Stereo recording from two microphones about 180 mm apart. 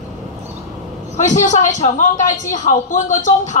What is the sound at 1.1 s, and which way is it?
A woman's voice, 45° left (ahead or behind).